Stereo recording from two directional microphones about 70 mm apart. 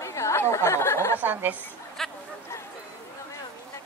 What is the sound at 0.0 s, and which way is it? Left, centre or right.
Chatter, left.